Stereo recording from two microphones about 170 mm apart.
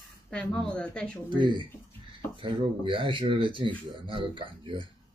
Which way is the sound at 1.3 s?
30° right (ahead or behind).